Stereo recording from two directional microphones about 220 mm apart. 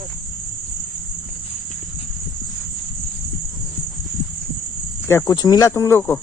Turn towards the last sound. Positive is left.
turn(degrees=10)  # may be behind; listen again after turning